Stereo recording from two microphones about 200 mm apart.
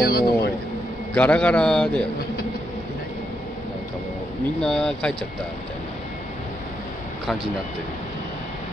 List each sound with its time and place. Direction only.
0.0 s a sound: 50° left (ahead or behind)
1.1 s a man's voice: 5° left (ahead or behind)
4.6 s a man's voice: 5° left (ahead or behind)